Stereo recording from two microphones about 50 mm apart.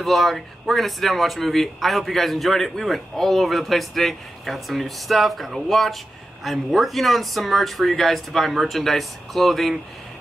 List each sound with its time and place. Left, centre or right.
0.0 s speech: centre